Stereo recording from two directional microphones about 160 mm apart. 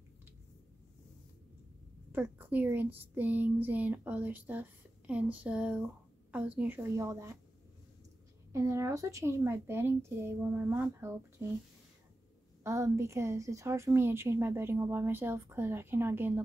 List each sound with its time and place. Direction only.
2.1 s a woman's voice: 15° right (ahead or behind)
8.5 s a woman's voice: 20° right (ahead or behind)
12.6 s a woman's voice: 20° right (ahead or behind)